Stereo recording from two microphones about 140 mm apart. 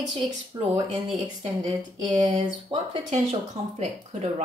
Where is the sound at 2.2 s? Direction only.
35° right (ahead or behind).